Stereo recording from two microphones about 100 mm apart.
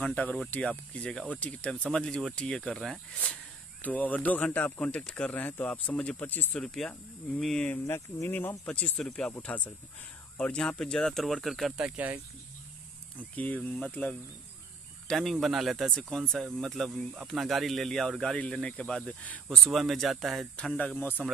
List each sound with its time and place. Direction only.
0.0 s speech: 15° left (ahead or behind)
3.8 s speech: 15° left (ahead or behind)
6.6 s speech: 5° left (ahead or behind)
7.8 s speech: 30° left (ahead or behind)
8.3 s speech: 15° left (ahead or behind); by 11.7 s centre (ahead or behind)
11.7 s speech: 15° right (ahead or behind)
13.4 s speech: 15° left (ahead or behind)
15.0 s speech: 5° left (ahead or behind)
19.5 s speech: centre (ahead or behind)
20.5 s speech: 10° left (ahead or behind)